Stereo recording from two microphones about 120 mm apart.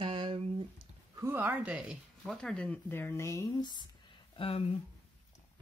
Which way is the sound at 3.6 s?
35° left (ahead or behind).